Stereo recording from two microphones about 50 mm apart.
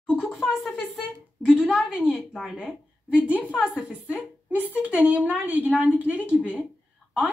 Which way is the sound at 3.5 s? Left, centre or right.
Centre.